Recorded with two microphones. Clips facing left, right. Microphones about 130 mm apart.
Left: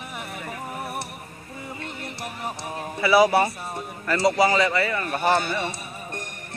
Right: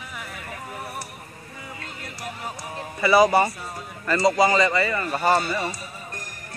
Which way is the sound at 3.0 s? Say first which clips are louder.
Right 1 dB; 5° left (ahead or behind).